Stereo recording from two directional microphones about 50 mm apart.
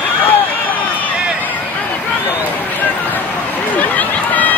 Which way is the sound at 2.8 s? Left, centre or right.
Left.